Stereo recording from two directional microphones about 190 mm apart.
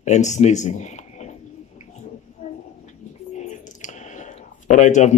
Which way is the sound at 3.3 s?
40° left (ahead or behind).